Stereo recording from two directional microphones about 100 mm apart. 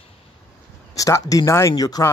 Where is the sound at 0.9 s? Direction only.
35° left (ahead or behind).